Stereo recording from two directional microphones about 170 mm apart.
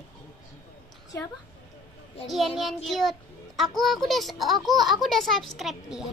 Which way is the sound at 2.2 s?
Centre (ahead or behind).